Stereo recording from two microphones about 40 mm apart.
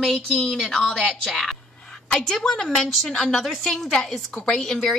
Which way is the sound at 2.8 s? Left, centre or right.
Centre.